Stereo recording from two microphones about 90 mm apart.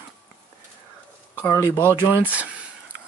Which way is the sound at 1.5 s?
25° left (ahead or behind).